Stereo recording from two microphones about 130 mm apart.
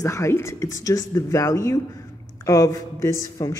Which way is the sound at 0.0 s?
25° left (ahead or behind).